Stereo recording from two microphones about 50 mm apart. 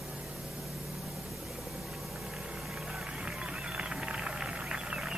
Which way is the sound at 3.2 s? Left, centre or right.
Centre.